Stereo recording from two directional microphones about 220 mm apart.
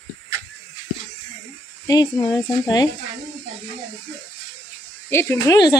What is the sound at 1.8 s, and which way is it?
Speech, 15° left (ahead or behind).